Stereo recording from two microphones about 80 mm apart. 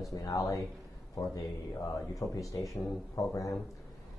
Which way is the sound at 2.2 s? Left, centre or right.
Left.